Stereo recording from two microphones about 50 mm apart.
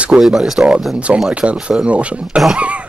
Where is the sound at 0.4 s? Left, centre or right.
Centre.